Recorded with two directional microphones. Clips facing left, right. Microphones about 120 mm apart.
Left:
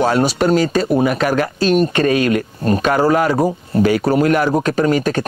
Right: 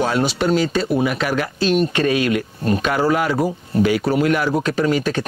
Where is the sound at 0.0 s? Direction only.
45° left (ahead or behind).